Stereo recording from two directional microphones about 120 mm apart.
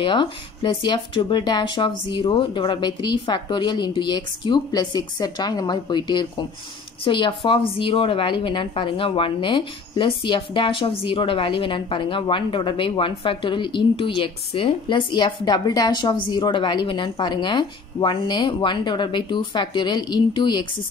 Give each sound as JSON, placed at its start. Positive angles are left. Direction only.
{"t": 0.0, "sound": "a woman's voice", "side_deg": 40}